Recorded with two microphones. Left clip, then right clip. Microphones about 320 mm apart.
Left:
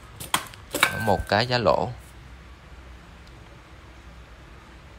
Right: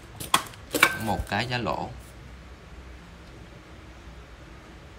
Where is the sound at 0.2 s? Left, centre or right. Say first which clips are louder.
Right 2 dB; centre.